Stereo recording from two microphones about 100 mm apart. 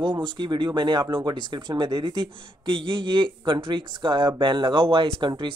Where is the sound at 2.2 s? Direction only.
55° right (ahead or behind).